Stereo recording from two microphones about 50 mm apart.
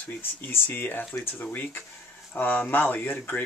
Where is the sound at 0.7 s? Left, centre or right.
Left.